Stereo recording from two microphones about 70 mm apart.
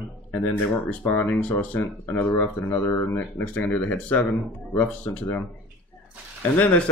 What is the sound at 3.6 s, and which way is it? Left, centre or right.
Speech, left.